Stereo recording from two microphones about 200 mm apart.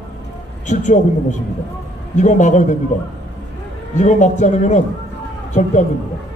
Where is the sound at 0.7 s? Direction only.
40° left (ahead or behind).